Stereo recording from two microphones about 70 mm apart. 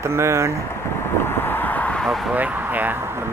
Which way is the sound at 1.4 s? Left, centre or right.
Left.